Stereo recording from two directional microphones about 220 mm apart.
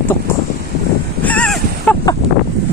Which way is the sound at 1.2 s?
5° left (ahead or behind).